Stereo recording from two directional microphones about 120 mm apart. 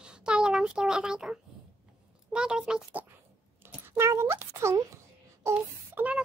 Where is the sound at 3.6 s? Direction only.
20° right (ahead or behind).